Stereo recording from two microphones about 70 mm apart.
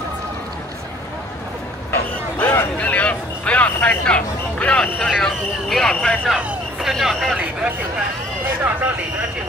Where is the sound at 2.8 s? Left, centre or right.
Centre.